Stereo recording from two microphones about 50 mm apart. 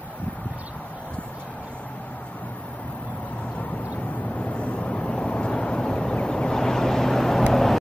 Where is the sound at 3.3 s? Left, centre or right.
Left; by 7.8 s centre.